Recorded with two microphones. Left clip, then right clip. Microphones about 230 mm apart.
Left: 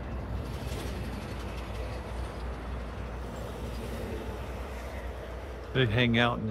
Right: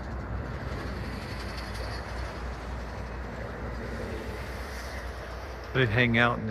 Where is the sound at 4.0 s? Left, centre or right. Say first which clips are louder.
Right 2 dB; left.